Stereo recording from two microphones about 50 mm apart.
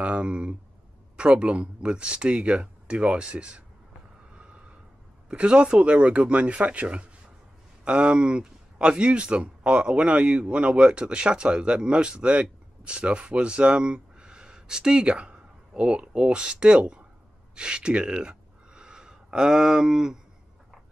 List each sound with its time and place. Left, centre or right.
0.0 s speech: right
5.3 s speech: right